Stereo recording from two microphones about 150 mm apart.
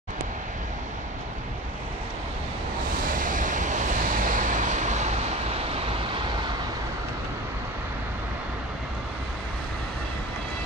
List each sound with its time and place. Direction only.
3.0 s vehicle: 65° right (ahead or behind); by 6.5 s 30° right (ahead or behind)